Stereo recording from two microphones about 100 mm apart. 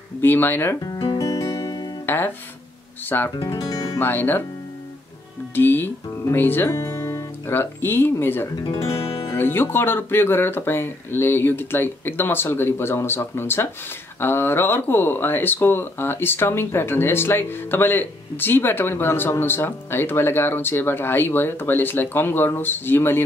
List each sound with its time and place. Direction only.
0.2 s speech: 20° left (ahead or behind)
0.9 s music: 55° left (ahead or behind)
1.2 s music: 35° left (ahead or behind)
2.0 s music: 20° left (ahead or behind)
3.3 s music: 35° left (ahead or behind)
4.0 s speech: 20° left (ahead or behind)
5.5 s speech: 20° left (ahead or behind)
6.8 s speech: 30° left (ahead or behind)
8.5 s speech: 45° left (ahead or behind)
8.8 s music: 80° left
9.3 s speech: 25° left (ahead or behind)